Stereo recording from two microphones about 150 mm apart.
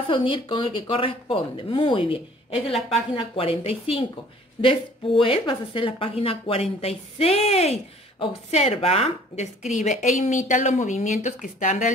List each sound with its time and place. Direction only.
0.1 s a woman's voice: 35° left (ahead or behind); by 11.9 s 55° left (ahead or behind)